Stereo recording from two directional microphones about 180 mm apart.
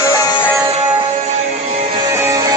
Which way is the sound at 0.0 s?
15° left (ahead or behind).